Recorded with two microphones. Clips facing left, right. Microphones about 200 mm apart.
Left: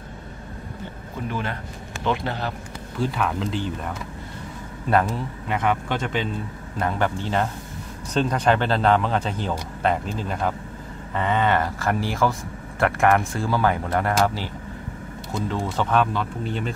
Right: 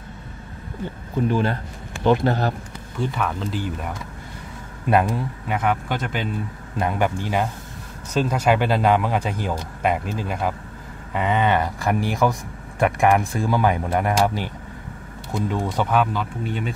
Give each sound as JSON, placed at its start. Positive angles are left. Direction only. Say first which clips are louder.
{"t": 1.3, "sound": "speech", "louder": "right 6 dB", "side_deg": -35}
{"t": 2.0, "sound": "speech", "louder": "right 7 dB", "side_deg": -45}
{"t": 3.2, "sound": "a man's voice", "louder": "left 1 dB", "side_deg": 0}